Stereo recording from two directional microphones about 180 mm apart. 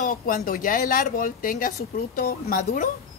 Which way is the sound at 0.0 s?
50° left (ahead or behind).